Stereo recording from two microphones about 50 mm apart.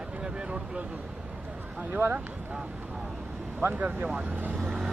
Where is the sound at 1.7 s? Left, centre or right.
Right.